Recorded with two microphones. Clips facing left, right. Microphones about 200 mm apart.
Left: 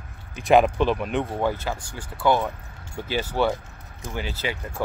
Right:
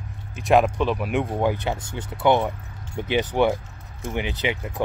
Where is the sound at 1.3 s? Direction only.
15° right (ahead or behind).